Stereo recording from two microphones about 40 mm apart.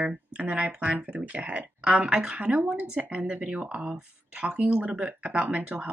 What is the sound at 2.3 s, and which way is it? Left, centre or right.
A woman's voice, right.